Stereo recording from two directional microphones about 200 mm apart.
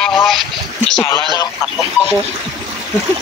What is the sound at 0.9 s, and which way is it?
Speech, 10° left (ahead or behind).